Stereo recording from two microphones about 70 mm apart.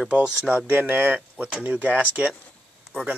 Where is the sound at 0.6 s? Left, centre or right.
Right.